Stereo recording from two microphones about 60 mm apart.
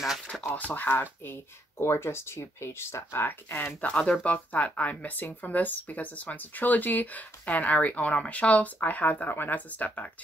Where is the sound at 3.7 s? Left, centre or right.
Centre.